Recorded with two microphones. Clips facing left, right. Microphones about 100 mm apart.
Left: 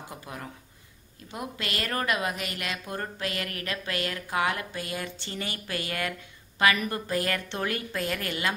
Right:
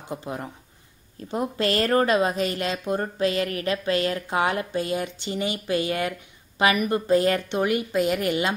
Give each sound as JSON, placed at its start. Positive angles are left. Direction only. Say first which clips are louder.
{"t": 0.1, "sound": "speech", "louder": "right 12 dB", "side_deg": -25}